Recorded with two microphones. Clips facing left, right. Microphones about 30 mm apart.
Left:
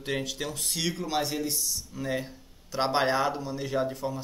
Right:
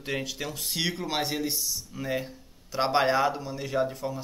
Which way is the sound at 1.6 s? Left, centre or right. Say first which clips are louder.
Even; centre.